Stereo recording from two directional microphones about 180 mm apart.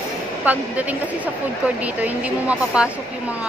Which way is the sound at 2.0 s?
5° right (ahead or behind).